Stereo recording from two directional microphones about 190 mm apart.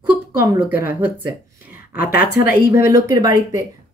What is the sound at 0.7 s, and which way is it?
Speech, 10° right (ahead or behind).